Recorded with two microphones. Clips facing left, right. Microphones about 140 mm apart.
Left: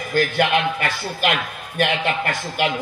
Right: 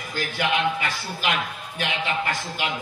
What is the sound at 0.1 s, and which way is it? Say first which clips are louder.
A man's voice: left 7 dB; 60° left (ahead or behind).